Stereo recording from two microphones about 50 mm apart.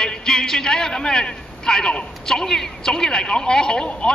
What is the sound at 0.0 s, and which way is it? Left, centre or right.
A man's voice, centre.